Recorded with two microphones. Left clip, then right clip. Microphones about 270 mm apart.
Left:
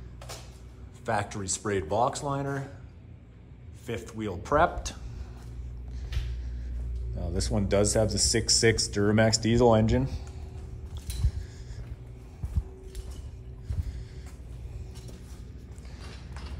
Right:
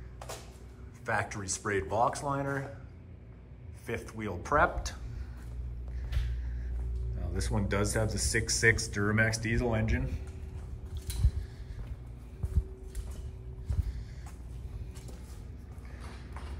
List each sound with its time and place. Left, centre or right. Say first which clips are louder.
1.0 s speech: left 3 dB; centre
3.8 s speech: left 3 dB; centre
7.2 s speech: left 5 dB; centre